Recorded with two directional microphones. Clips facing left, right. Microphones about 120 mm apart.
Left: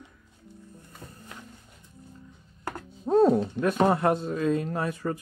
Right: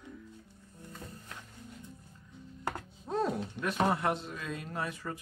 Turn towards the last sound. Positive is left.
turn(degrees=45)  # may be behind; listen again after turning